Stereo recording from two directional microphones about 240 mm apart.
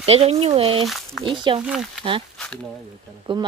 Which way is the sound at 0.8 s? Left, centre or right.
Centre.